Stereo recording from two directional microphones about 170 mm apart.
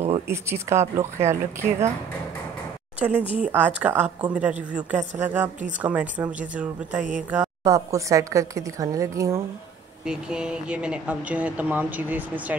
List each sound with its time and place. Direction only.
0.3 s speech: 15° right (ahead or behind)
3.0 s a woman's voice: 10° right (ahead or behind)
10.0 s speech: 5° right (ahead or behind)